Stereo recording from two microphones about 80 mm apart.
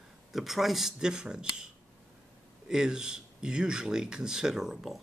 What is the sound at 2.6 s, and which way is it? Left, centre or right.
Speech, centre.